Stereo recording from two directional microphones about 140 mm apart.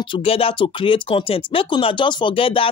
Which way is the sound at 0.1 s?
45° left (ahead or behind).